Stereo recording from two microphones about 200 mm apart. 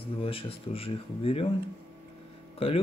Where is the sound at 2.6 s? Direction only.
30° left (ahead or behind).